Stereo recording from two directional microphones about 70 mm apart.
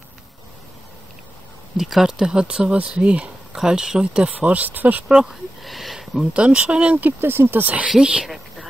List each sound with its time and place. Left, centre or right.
1.8 s speech: centre; by 5.0 s right
5.0 s speech: centre; by 7.7 s right
7.9 s speech: centre